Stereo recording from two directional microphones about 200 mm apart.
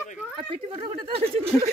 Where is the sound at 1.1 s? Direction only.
30° right (ahead or behind).